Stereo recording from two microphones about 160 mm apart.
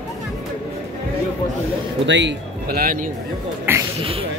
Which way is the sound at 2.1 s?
90° right.